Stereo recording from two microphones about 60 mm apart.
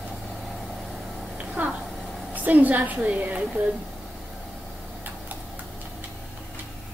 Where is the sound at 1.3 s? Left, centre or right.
Right.